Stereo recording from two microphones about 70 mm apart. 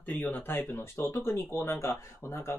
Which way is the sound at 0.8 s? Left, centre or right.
Left.